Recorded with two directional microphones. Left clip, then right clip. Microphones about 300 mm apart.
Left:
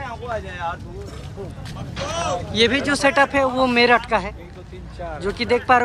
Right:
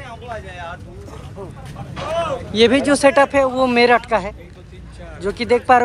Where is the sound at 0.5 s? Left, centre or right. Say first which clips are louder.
Left 4 dB; left.